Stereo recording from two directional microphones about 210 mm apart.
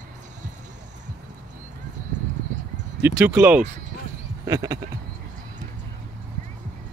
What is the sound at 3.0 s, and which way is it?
Speech, 10° right (ahead or behind).